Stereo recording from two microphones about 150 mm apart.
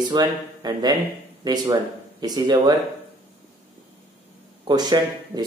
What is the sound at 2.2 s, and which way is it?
Speech, 25° right (ahead or behind).